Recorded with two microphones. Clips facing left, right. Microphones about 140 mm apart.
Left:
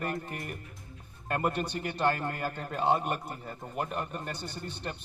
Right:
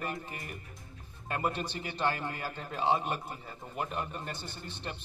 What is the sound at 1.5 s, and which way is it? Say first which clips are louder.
A man's voice: left 4 dB; 50° left (ahead or behind).